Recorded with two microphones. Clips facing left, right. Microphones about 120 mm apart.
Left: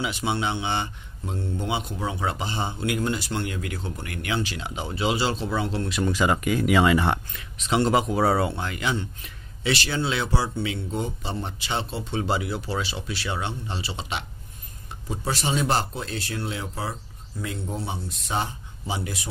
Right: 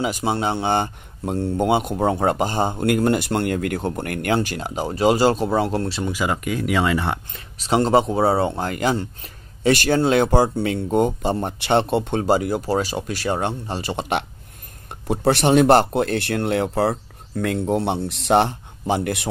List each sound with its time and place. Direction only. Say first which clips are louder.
0.0 s speech: right 5 dB; 40° right (ahead or behind)
6.2 s speech: left 1 dB; centre (ahead or behind)
7.3 s speech: right 4 dB; 35° right (ahead or behind)
8.5 s speech: right 6 dB; 40° right (ahead or behind); by 19.2 s 60° right (ahead or behind)